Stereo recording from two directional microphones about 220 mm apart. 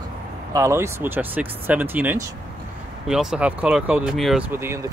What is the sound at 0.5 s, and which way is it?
Speech, 15° right (ahead or behind).